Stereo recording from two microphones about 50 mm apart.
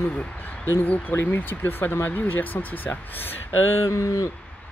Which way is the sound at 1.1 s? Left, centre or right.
Left.